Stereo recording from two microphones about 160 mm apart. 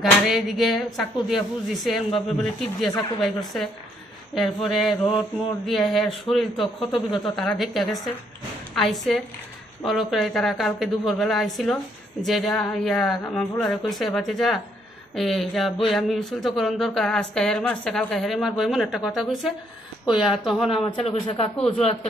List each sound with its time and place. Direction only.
0.0 s speech: centre (ahead or behind)
21.1 s speech: 35° left (ahead or behind)
21.5 s speech: 5° left (ahead or behind)